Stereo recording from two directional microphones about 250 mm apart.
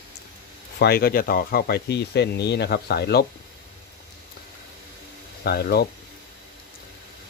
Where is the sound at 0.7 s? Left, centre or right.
Left.